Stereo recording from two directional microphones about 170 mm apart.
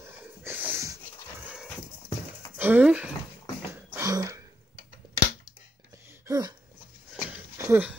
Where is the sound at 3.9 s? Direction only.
20° right (ahead or behind).